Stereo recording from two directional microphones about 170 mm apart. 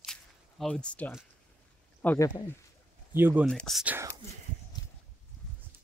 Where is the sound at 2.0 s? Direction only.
10° left (ahead or behind).